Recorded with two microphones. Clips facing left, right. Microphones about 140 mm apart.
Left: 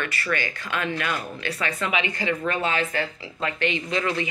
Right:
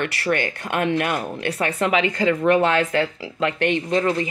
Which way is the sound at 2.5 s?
65° right (ahead or behind).